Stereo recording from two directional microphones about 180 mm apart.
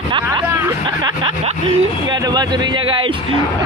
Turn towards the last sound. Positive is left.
turn(degrees=-25)  # may be behind; listen again after turning